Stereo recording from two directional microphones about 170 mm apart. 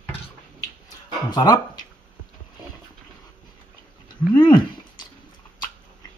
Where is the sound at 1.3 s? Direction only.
25° left (ahead or behind).